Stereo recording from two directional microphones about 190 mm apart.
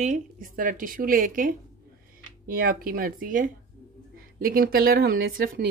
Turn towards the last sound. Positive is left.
turn(degrees=-50)  # may be behind; listen again after turning